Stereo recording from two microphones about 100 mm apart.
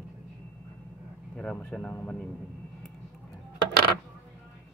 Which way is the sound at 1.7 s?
10° left (ahead or behind).